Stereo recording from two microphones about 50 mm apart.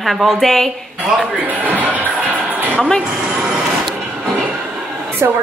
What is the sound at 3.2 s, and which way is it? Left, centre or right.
Vehicle, centre.